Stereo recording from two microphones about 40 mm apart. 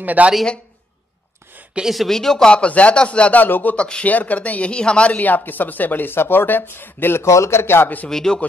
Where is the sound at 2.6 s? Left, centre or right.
Left.